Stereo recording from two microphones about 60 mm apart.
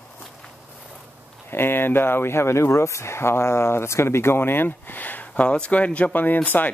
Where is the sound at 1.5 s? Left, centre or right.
Left.